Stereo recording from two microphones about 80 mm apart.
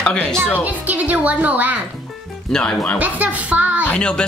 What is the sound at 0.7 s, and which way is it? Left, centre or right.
Speech, centre.